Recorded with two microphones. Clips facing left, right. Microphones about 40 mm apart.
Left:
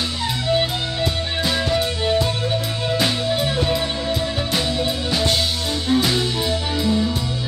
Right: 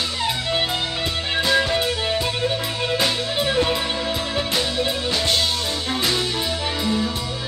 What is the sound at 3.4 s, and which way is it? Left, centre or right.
Music, right.